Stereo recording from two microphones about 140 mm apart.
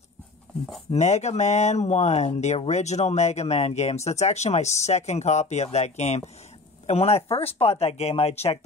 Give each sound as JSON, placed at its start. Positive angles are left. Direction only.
{"t": 0.9, "sound": "speech", "side_deg": 55}